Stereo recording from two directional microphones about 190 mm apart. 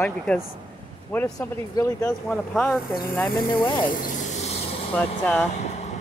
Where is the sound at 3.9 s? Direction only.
40° left (ahead or behind).